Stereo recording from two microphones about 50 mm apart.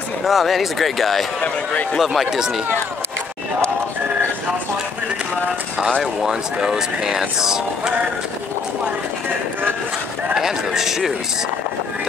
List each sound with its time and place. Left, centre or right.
0.2 s speech: centre
1.4 s speech: left
2.0 s speech: centre
6.2 s speech: centre
10.3 s speech: centre